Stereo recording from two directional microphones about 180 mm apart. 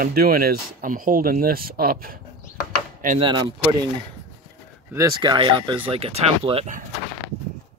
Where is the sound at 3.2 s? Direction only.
25° right (ahead or behind).